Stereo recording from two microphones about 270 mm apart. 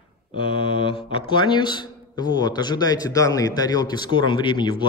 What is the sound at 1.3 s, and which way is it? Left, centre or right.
A man's voice, centre.